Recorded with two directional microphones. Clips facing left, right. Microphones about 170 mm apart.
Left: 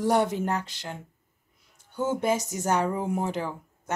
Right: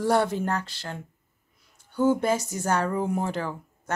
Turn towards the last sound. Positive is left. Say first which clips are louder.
# right 1 dB
turn(degrees=15)  # may be behind; listen again after turning